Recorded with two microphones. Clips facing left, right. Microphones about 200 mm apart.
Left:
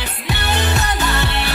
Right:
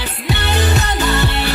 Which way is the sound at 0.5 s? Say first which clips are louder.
Right 2 dB; 20° right (ahead or behind).